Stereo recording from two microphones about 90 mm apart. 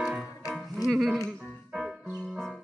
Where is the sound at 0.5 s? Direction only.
Centre (ahead or behind).